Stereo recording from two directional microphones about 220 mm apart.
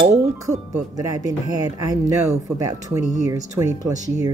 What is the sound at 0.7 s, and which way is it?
Speech, 15° right (ahead or behind).